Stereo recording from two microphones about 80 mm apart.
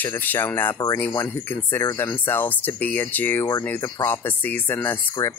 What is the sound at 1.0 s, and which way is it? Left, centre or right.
Speech, left.